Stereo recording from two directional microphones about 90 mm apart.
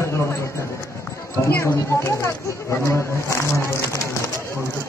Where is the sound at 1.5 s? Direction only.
30° left (ahead or behind).